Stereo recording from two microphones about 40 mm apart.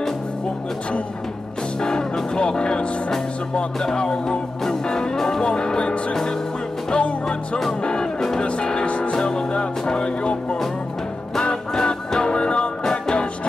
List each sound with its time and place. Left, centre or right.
1.8 s music: centre
5.4 s music: left
8.5 s music: left
9.1 s music: left
11.7 s music: centre